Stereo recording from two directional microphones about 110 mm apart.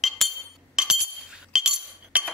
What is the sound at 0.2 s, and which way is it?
Chink, centre (ahead or behind).